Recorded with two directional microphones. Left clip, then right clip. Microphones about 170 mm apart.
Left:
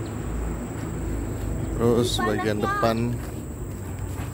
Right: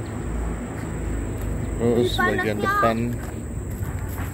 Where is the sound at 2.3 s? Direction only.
25° left (ahead or behind).